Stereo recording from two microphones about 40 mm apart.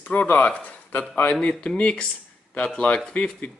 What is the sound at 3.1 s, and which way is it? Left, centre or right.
Speech, left.